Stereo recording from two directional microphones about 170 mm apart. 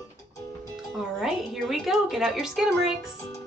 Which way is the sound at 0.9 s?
Centre (ahead or behind).